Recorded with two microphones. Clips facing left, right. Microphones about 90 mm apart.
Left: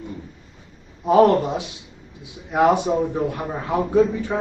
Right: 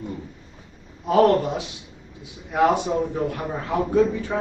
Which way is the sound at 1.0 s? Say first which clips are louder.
Left 2 dB; 15° left (ahead or behind).